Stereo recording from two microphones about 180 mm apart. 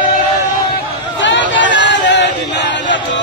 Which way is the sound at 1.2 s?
90° left.